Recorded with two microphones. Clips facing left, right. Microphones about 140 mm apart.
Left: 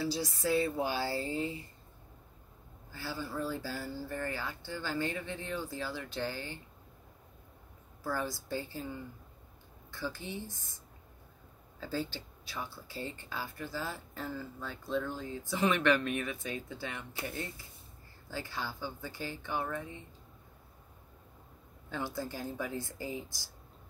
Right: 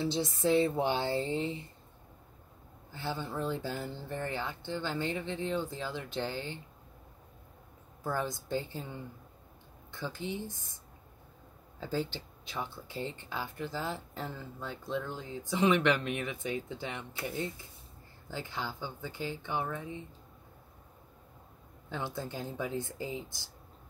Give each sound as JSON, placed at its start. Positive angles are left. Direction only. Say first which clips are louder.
{"t": 0.0, "sound": "speech", "louder": "right 3 dB", "side_deg": -25}
{"t": 2.9, "sound": "speech", "louder": "right 2 dB", "side_deg": -20}
{"t": 8.0, "sound": "speech", "louder": "right 2 dB", "side_deg": -20}
{"t": 11.8, "sound": "speech", "louder": "right 2 dB", "side_deg": -20}
{"t": 18.3, "sound": "speech", "louder": "right 1 dB", "side_deg": -20}
{"t": 21.8, "sound": "speech", "louder": "even", "side_deg": -20}